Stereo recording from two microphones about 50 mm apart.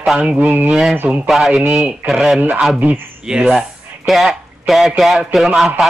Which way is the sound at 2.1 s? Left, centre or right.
Centre.